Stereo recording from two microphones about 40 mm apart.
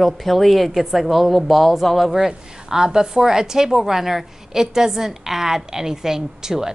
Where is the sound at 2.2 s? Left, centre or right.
Centre.